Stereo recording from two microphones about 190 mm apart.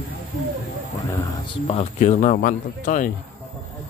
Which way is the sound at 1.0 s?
30° left (ahead or behind).